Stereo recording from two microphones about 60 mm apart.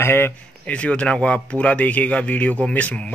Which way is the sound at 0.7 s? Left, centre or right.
Left.